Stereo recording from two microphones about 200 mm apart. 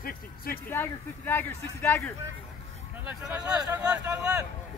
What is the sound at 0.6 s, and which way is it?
Speech, 10° left (ahead or behind).